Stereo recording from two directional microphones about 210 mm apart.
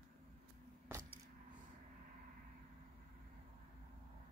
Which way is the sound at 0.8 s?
10° right (ahead or behind).